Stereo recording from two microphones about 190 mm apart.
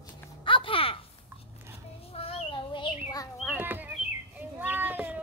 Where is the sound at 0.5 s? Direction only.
30° left (ahead or behind).